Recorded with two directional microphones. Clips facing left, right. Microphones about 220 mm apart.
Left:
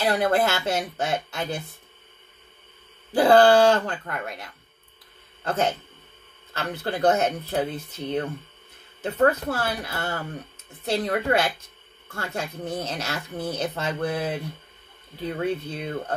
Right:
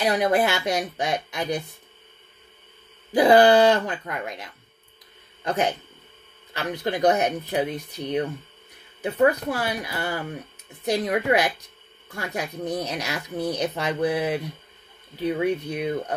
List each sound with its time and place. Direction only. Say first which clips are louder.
0.0 s speech: right 1 dB; 15° right (ahead or behind)
3.1 s speech: right 1 dB; 15° right (ahead or behind)